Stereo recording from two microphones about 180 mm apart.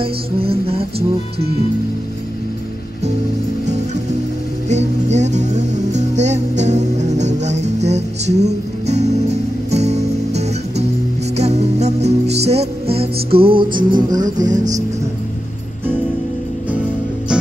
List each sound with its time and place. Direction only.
0.0 s music: 30° right (ahead or behind)
3.6 s music: 40° right (ahead or behind); by 14.6 s 20° right (ahead or behind)